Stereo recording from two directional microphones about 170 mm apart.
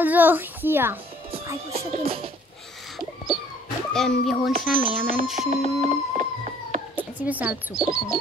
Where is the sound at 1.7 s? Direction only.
35° right (ahead or behind).